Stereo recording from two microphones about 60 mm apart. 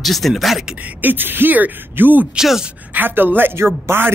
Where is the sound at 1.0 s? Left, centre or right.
Right.